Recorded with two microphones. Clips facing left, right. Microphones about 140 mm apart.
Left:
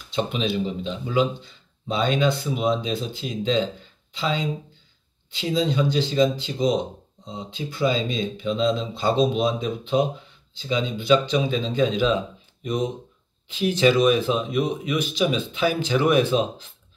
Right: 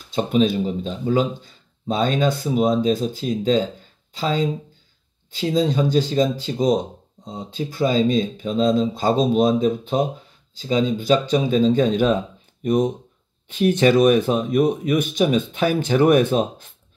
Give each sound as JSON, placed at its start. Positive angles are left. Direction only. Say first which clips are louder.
{"t": 0.1, "sound": "speech", "louder": "right 6 dB", "side_deg": -45}